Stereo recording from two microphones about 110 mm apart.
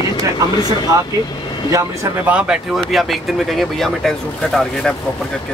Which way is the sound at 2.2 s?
10° right (ahead or behind).